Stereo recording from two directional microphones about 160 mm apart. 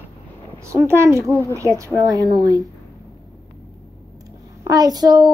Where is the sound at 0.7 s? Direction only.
15° right (ahead or behind).